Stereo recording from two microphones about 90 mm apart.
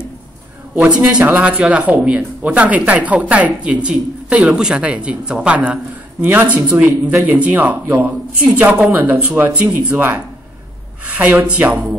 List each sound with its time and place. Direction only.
0.7 s speech: 10° right (ahead or behind)
6.8 s a man's voice: 35° right (ahead or behind)
7.2 s speech: 15° right (ahead or behind)
7.8 s speech: 30° right (ahead or behind)
8.5 s speech: 15° right (ahead or behind)